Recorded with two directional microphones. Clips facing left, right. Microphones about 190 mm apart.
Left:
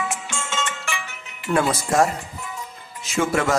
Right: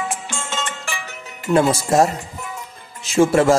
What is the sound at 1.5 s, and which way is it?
Speech, 25° right (ahead or behind).